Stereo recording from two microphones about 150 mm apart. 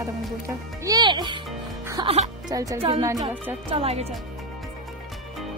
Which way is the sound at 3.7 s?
40° right (ahead or behind).